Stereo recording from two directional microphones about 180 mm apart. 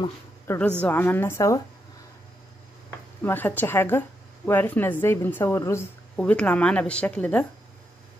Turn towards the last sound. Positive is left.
turn(degrees=5)  # may be behind; listen again after turning